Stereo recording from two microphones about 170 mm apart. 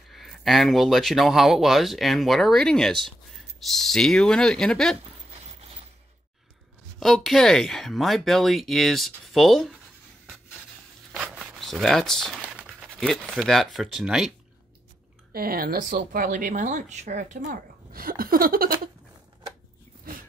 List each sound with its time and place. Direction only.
0.1 s speech: centre (ahead or behind)
5.3 s a sound: 35° right (ahead or behind)
7.0 s speech: centre (ahead or behind)
11.3 s a sound: centre (ahead or behind)
12.6 s speech: 5° left (ahead or behind)
15.3 s speech: 60° right (ahead or behind)